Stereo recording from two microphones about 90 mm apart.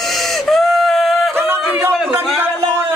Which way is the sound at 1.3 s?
25° right (ahead or behind).